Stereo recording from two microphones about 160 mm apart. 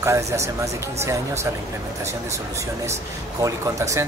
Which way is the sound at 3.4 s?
20° right (ahead or behind).